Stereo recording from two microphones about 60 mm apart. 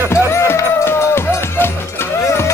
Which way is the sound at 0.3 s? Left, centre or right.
Left.